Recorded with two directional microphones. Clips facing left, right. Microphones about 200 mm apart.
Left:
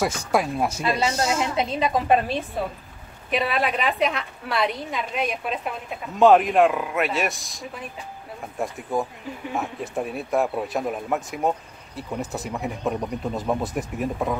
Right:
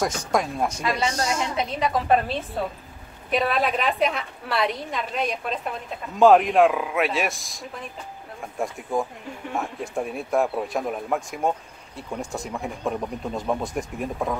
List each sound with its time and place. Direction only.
0.0 s speech: 5° left (ahead or behind)
1.1 s a woman's voice: 25° left (ahead or behind)
3.3 s a woman's voice: centre (ahead or behind)